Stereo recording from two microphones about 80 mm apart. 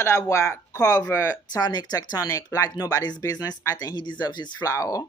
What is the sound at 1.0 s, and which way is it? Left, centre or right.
Speech, left.